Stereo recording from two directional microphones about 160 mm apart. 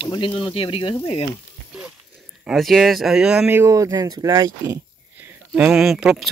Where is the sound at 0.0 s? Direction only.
30° left (ahead or behind).